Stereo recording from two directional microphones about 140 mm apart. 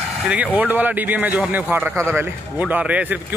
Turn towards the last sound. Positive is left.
turn(degrees=-10)  # may be behind; listen again after turning